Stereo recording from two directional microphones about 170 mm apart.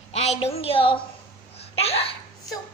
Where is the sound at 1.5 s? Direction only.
35° left (ahead or behind).